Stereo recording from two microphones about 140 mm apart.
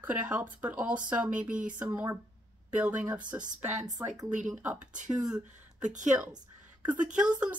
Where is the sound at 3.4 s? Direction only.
60° right (ahead or behind).